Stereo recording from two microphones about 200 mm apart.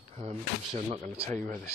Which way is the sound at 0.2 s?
30° right (ahead or behind).